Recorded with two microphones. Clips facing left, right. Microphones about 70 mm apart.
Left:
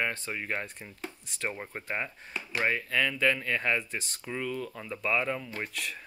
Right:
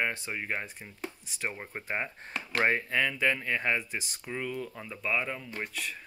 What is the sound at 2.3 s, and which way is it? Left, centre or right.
Speech, right.